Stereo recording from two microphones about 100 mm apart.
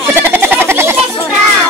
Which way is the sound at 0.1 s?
20° right (ahead or behind).